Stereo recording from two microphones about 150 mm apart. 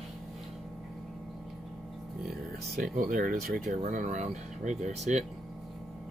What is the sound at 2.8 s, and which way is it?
Speech, 65° right (ahead or behind).